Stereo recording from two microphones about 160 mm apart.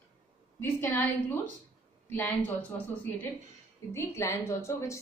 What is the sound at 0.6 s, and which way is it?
Speech, 10° left (ahead or behind).